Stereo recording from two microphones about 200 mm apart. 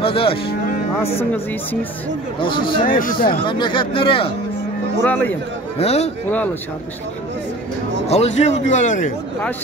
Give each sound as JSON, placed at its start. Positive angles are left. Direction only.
{"t": 0.0, "sound": "speech", "side_deg": 25}
{"t": 1.3, "sound": "speech", "side_deg": 10}
{"t": 2.4, "sound": "speech", "side_deg": 25}
{"t": 3.0, "sound": "speech", "side_deg": 45}
{"t": 3.4, "sound": "speech", "side_deg": 25}
{"t": 5.0, "sound": "speech", "side_deg": 10}
{"t": 5.8, "sound": "a man's voice", "side_deg": 30}
{"t": 8.1, "sound": "a man's voice", "side_deg": 30}